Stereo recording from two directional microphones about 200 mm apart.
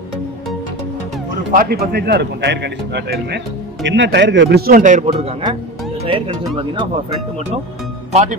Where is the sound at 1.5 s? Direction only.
50° right (ahead or behind); by 7.0 s 25° right (ahead or behind).